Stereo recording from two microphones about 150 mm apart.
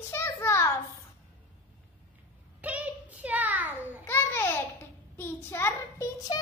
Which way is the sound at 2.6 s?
10° right (ahead or behind).